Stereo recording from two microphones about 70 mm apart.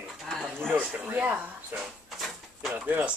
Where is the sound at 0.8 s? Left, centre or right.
Centre.